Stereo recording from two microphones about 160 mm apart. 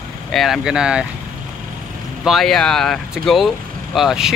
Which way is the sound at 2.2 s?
Centre (ahead or behind).